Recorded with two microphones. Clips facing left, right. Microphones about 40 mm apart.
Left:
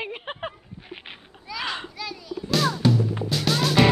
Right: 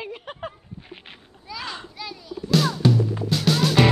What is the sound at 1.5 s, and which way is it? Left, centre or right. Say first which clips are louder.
Children playing: left 2 dB; centre.